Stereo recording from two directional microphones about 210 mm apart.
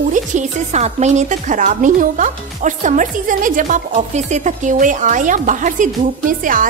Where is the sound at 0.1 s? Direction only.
35° right (ahead or behind).